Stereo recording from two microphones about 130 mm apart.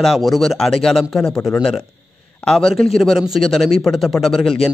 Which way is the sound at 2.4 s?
5° left (ahead or behind).